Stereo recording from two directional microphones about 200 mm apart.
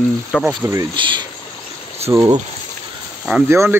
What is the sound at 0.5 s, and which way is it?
Speech, 15° right (ahead or behind).